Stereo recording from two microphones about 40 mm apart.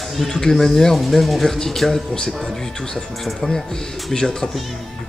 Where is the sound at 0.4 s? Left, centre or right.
Centre.